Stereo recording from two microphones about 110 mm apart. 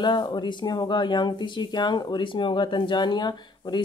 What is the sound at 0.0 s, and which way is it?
Speech, 45° left (ahead or behind).